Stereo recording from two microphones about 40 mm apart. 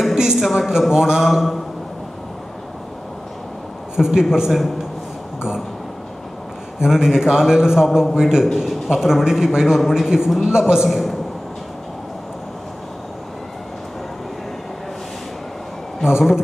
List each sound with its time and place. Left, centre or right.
0.1 s speech: centre
3.9 s speech: centre
6.8 s a man's voice: centre
10.9 s a woman's voice: centre
16.0 s a man's voice: centre